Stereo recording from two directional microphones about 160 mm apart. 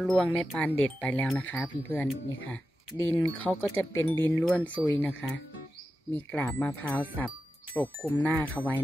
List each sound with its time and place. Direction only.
0.0 s speech: centre (ahead or behind)